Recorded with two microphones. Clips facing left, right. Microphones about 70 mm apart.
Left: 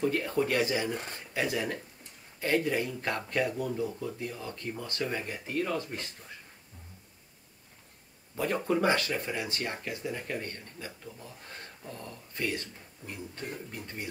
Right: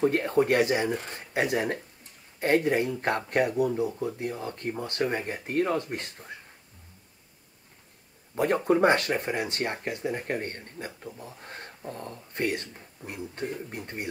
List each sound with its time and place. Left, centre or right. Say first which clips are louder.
0.0 s speech: right 5 dB; right
8.6 s speech: right 5 dB; right